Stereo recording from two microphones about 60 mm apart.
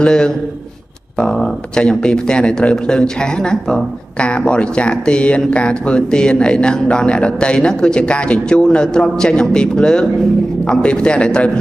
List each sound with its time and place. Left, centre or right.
0.0 s a man's voice: centre